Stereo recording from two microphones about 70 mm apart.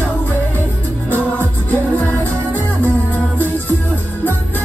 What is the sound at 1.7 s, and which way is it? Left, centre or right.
Music, left.